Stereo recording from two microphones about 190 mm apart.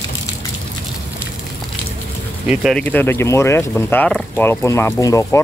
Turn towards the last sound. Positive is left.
turn(degrees=15)  # may be behind; listen again after turning